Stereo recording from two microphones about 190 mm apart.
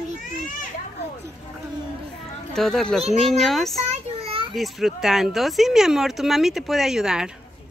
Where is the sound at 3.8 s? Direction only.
30° right (ahead or behind).